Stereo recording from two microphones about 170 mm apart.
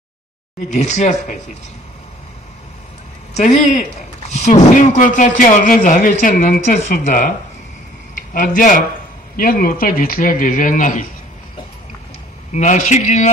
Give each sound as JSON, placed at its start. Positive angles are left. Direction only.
{"t": 0.7, "sound": "speech", "side_deg": 40}
{"t": 3.3, "sound": "a man's voice", "side_deg": 50}
{"t": 12.5, "sound": "speech", "side_deg": 45}